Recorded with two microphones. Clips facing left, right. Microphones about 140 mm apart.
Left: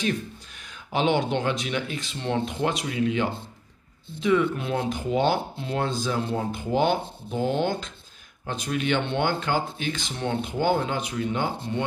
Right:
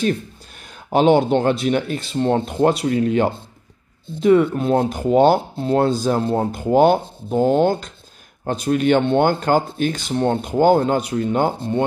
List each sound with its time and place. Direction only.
0.7 s rub: 45° right (ahead or behind)